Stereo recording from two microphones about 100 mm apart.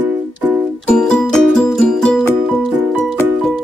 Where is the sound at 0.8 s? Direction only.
10° left (ahead or behind).